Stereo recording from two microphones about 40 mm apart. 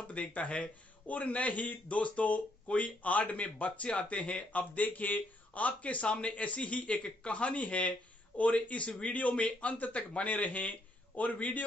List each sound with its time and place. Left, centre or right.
0.1 s speech: left